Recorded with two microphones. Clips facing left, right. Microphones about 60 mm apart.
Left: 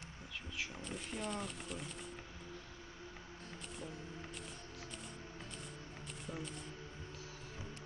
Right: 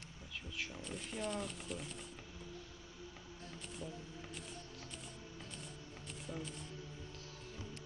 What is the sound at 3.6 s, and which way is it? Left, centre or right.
Music, centre.